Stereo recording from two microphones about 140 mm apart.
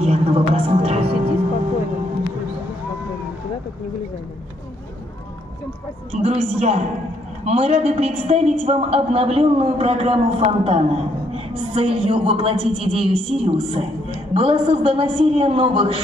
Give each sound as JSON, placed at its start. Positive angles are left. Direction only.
{"t": 0.0, "sound": "music", "side_deg": -45}
{"t": 6.1, "sound": "a woman's voice", "side_deg": -50}